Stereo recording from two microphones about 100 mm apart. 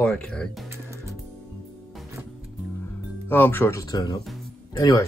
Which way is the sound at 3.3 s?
20° left (ahead or behind).